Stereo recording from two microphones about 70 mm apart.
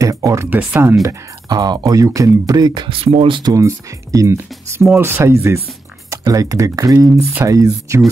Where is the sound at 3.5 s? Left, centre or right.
Right.